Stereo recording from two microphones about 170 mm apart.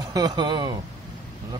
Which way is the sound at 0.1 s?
25° right (ahead or behind).